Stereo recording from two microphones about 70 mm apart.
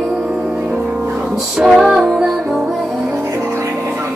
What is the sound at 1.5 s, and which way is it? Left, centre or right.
Music, centre.